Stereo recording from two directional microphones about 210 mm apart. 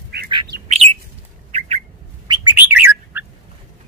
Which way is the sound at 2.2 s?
20° right (ahead or behind).